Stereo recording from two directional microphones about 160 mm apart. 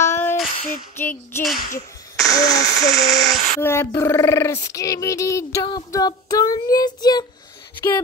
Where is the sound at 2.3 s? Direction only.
20° left (ahead or behind).